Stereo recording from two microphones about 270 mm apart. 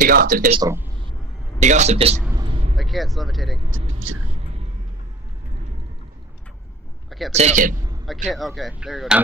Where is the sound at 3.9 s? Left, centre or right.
Right.